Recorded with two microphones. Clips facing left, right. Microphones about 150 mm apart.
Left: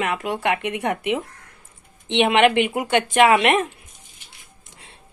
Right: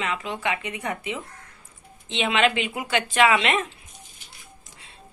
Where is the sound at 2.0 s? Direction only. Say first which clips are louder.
Left 6 dB; 60° left (ahead or behind).